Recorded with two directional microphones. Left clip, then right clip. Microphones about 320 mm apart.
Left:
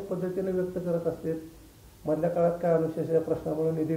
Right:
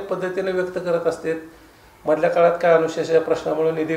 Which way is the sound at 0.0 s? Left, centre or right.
Centre.